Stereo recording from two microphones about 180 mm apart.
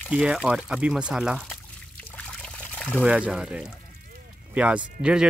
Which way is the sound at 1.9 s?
5° left (ahead or behind).